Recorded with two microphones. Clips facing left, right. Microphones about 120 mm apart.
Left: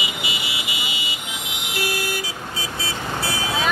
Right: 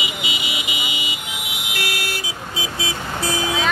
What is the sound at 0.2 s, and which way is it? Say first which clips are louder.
Vehicle: right 1 dB; 20° right (ahead or behind).